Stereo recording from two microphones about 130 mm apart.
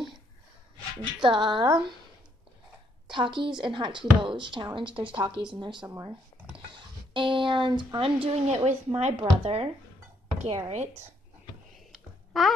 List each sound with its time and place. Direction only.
1.2 s speech: 40° right (ahead or behind)
3.1 s speech: 40° right (ahead or behind)
8.6 s speech: 60° right (ahead or behind)
9.2 s speech: 50° right (ahead or behind)
11.9 s a sound: centre (ahead or behind)